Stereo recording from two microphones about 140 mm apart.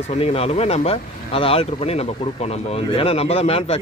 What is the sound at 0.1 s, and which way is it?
Speech, 45° left (ahead or behind).